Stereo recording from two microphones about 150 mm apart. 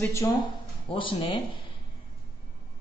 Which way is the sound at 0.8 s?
35° left (ahead or behind).